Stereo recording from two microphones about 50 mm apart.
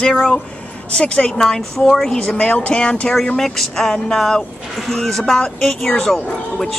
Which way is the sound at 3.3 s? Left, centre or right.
Centre.